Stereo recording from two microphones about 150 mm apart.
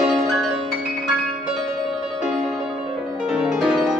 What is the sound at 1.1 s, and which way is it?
Music, 5° right (ahead or behind).